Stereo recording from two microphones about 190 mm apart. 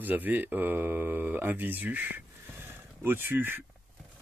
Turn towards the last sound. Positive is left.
turn(degrees=-10)  # may be behind; listen again after turning